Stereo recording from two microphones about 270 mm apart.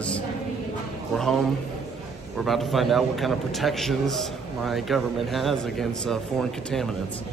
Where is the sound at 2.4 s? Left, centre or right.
Centre.